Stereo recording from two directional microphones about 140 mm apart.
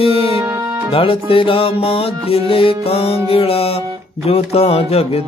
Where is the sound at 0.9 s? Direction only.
40° left (ahead or behind).